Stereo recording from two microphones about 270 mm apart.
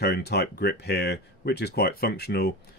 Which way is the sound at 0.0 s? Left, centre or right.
Left.